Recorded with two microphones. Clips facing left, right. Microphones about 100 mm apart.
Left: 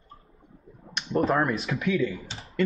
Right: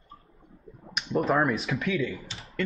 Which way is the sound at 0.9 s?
Centre (ahead or behind).